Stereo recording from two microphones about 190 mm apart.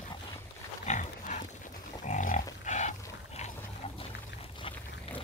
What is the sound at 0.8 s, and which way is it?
Pig, 40° left (ahead or behind).